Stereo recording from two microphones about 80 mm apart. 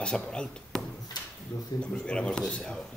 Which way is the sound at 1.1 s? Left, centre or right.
Left.